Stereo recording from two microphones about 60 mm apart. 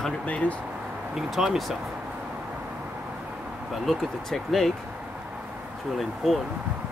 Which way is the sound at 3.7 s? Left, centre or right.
Centre.